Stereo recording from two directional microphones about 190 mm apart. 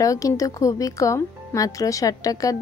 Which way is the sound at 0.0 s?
15° left (ahead or behind).